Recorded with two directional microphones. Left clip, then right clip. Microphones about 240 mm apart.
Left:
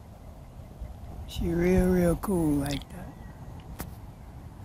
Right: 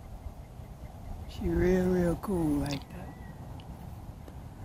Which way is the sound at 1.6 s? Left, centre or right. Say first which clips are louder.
Left 2 dB; left.